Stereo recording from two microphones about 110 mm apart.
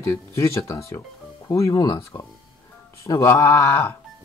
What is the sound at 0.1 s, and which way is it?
Speech, 30° left (ahead or behind).